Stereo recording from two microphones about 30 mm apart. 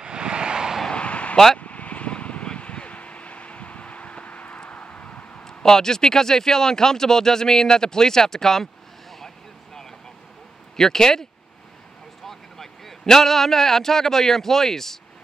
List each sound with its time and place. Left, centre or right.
0.0 s vehicle: right
1.0 s a sound: left
1.6 s vehicle: left
5.4 s speech: centre
10.8 s a man's voice: centre
12.3 s vehicle: centre
13.0 s a man's voice: centre